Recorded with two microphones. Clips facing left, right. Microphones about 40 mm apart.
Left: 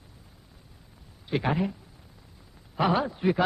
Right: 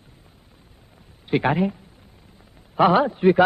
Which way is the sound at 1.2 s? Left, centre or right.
Right.